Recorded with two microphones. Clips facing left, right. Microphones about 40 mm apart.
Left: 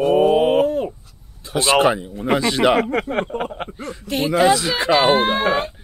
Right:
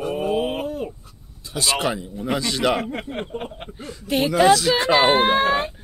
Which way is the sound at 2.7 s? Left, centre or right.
Left.